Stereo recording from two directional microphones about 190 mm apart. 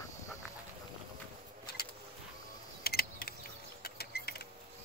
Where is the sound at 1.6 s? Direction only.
55° left (ahead or behind).